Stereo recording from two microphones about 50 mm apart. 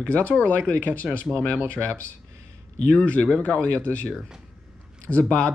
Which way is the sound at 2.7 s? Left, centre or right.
Left.